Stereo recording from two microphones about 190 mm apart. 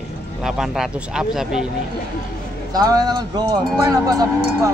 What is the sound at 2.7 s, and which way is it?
Speech, 20° right (ahead or behind).